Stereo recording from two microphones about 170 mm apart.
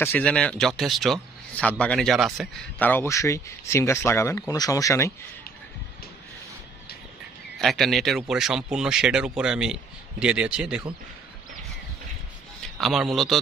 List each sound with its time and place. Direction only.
0.0 s speech: 10° left (ahead or behind)
2.8 s speech: 10° left (ahead or behind)
7.5 s speech: centre (ahead or behind)
12.7 s speech: centre (ahead or behind)